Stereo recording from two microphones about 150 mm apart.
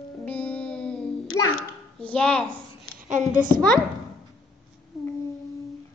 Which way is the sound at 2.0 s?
5° left (ahead or behind).